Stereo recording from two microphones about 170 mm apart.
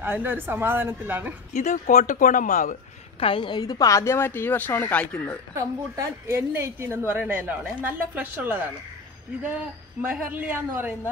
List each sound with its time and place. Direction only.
0.0 s a man's voice: 10° right (ahead or behind)
1.5 s speech: 45° left (ahead or behind)
3.2 s speech: 30° left (ahead or behind); by 5.4 s 10° left (ahead or behind)
5.5 s a man's voice: 15° right (ahead or behind)